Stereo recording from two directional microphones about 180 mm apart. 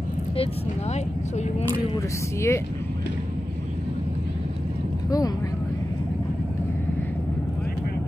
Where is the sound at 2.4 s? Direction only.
15° left (ahead or behind).